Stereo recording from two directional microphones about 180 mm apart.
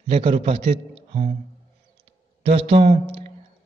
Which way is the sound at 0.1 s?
35° right (ahead or behind).